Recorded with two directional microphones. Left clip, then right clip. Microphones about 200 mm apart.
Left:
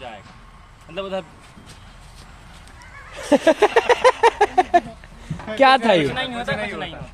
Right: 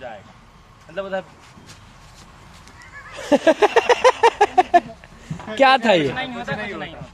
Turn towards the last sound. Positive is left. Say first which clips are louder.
# left 2 dB
turn(degrees=35)  # may be behind; listen again after turning